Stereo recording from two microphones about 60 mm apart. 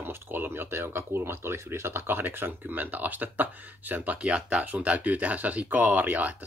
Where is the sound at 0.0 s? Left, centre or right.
Right.